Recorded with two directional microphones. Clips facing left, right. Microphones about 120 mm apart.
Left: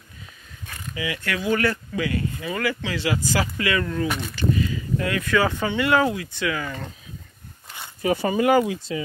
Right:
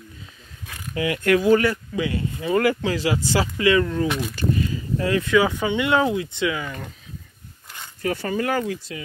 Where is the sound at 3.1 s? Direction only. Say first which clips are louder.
Right 2 dB; 25° right (ahead or behind).